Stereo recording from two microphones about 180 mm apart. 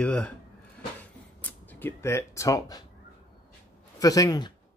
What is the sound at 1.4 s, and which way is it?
Speech, 10° left (ahead or behind).